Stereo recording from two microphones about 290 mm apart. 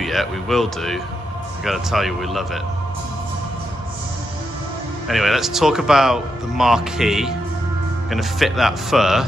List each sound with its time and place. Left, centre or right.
0.0 s speech: centre
5.0 s speech: centre